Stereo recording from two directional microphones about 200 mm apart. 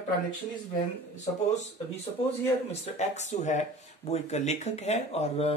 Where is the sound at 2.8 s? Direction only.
35° left (ahead or behind).